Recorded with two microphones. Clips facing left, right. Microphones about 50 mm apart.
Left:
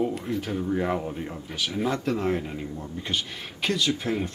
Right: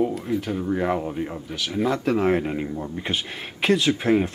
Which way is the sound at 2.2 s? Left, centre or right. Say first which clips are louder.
Right 6 dB; right.